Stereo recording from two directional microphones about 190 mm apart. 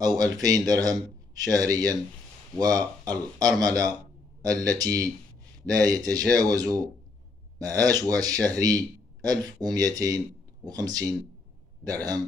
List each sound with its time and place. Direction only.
0.2 s speech: 20° right (ahead or behind)